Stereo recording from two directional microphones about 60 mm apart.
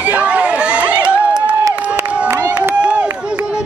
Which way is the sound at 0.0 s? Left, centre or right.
Right.